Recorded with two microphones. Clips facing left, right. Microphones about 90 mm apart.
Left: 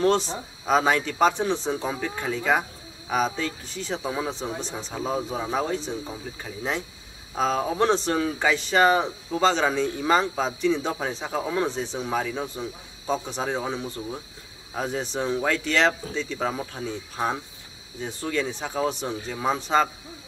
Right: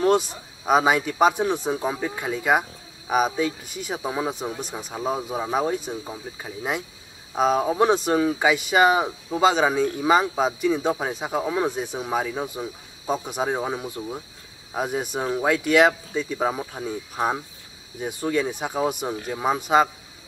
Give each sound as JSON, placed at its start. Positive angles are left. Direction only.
{"t": 0.0, "sound": "speech", "side_deg": -10}